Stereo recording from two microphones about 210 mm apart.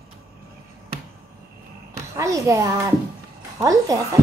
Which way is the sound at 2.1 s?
15° right (ahead or behind).